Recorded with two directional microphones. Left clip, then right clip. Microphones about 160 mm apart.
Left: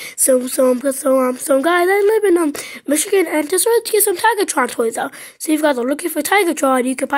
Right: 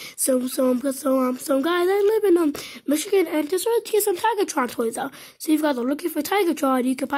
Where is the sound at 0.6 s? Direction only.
20° right (ahead or behind).